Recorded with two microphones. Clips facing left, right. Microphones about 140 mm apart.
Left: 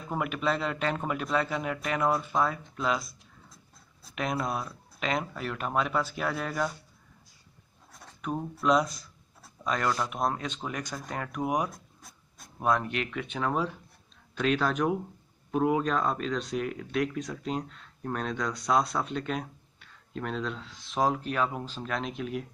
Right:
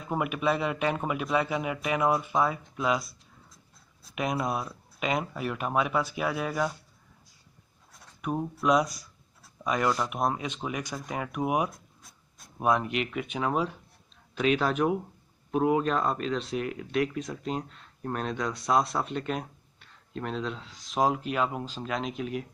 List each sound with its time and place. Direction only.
0.1 s speech: 5° right (ahead or behind)
4.1 s speech: 10° right (ahead or behind)
8.2 s speech: 10° right (ahead or behind)